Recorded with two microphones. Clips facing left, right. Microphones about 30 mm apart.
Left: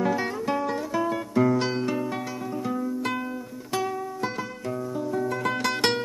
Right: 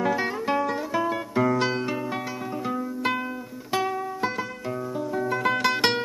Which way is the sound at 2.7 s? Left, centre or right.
Centre.